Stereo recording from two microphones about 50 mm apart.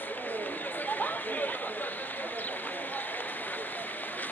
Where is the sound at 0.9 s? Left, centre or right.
Left.